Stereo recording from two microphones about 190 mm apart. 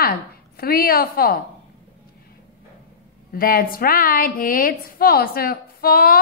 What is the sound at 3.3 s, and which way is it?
A woman's voice, 50° left (ahead or behind).